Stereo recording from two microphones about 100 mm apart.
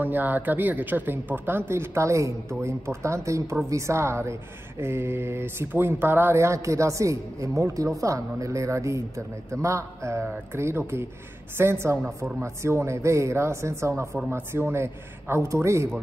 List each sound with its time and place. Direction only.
0.0 s speech: 20° right (ahead or behind)
10.2 s speech: 15° right (ahead or behind)